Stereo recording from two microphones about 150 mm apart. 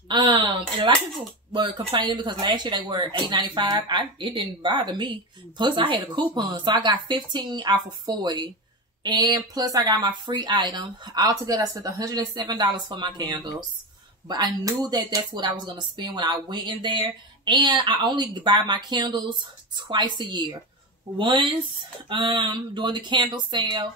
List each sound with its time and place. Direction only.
0.1 s speech: 30° right (ahead or behind)